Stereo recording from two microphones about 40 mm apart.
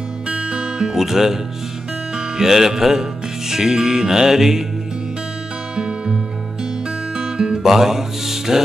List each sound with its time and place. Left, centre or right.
0.3 s music: right; by 4.6 s centre
5.8 s music: centre
7.2 s guitar: right
7.6 s mantra: centre